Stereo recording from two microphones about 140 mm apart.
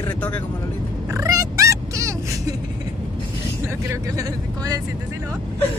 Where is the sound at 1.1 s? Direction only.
25° right (ahead or behind).